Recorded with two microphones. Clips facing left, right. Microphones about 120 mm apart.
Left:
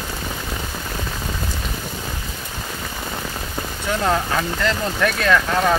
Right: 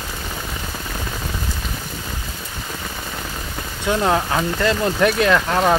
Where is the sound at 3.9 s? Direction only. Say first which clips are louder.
Right 2 dB; 15° right (ahead or behind).